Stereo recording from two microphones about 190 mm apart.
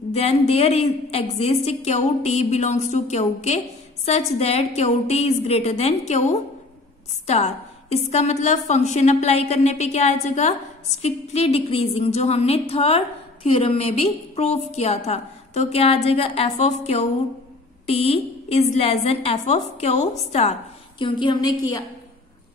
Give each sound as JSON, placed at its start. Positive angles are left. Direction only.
{"t": 0.1, "sound": "a woman's voice", "side_deg": 35}
{"t": 21.0, "sound": "a woman's voice", "side_deg": 25}